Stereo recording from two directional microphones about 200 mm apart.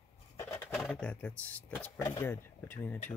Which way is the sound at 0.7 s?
Centre (ahead or behind).